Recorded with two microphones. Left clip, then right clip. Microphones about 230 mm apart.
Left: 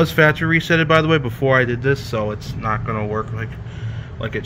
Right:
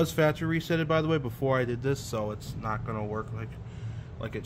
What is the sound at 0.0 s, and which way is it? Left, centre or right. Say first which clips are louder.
Speech: left 11 dB; centre.